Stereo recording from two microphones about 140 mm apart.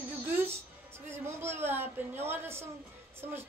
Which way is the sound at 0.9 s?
15° right (ahead or behind).